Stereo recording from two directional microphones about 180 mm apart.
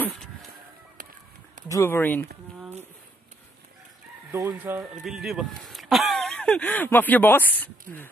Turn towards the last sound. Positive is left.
turn(degrees=10)  # may be behind; listen again after turning